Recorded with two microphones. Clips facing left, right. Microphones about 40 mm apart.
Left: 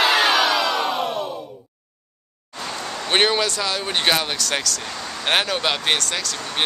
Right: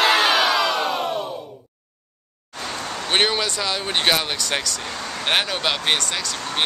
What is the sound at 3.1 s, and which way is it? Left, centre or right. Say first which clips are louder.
Speech: left 2 dB; centre.